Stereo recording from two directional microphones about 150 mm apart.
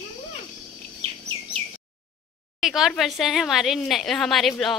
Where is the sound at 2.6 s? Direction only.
Centre (ahead or behind).